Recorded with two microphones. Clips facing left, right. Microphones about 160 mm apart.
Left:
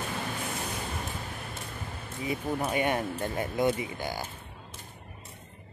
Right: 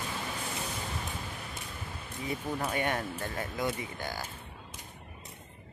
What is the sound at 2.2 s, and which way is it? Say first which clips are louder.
Speech: left 3 dB; 10° left (ahead or behind).